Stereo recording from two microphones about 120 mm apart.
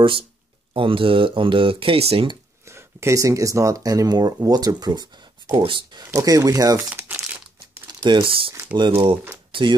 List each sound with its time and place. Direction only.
0.7 s speech: 45° right (ahead or behind)
2.7 s speech: 25° right (ahead or behind); by 6.0 s 45° right (ahead or behind)
6.1 s speech: 30° right (ahead or behind)
7.0 s crumpling: 20° right (ahead or behind)
7.8 s speech: 40° right (ahead or behind)